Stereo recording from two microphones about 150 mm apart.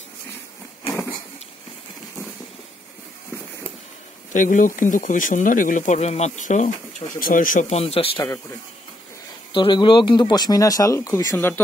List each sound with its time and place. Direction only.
4.3 s speech: 55° left (ahead or behind)
7.2 s speech: 65° left (ahead or behind)
7.7 s speech: 40° left (ahead or behind)
9.5 s speech: 30° left (ahead or behind); by 11.6 s 15° left (ahead or behind)